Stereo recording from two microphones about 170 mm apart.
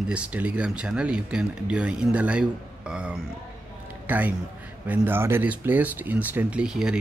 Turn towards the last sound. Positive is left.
turn(degrees=-5)  # may be behind; listen again after turning